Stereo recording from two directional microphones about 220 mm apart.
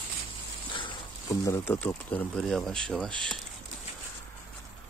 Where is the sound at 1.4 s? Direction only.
15° left (ahead or behind).